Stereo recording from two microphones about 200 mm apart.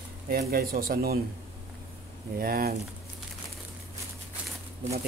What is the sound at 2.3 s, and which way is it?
Speech, 45° right (ahead or behind).